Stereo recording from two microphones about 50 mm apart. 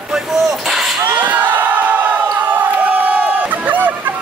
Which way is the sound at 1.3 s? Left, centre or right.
Right.